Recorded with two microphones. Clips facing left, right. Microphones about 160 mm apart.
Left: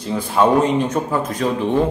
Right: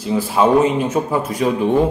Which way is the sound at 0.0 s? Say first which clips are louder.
Right 1 dB; 5° right (ahead or behind).